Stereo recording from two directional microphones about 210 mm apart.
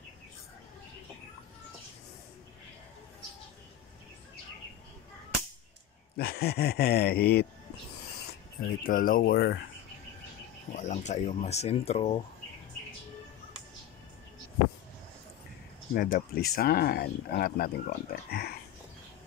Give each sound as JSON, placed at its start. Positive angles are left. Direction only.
{"t": 6.1, "sound": "speech", "side_deg": 50}
{"t": 8.8, "sound": "speech", "side_deg": 40}
{"t": 10.7, "sound": "speech", "side_deg": 35}
{"t": 15.9, "sound": "speech", "side_deg": 45}